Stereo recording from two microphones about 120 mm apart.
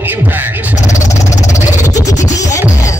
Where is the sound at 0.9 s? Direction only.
25° left (ahead or behind).